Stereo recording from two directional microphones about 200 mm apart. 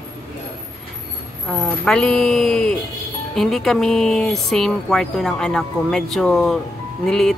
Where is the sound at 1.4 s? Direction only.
5° left (ahead or behind).